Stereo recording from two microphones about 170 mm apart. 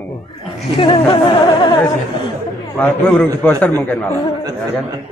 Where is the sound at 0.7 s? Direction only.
30° left (ahead or behind).